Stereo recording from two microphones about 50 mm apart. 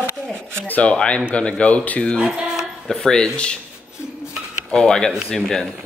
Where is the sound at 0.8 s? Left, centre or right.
Left.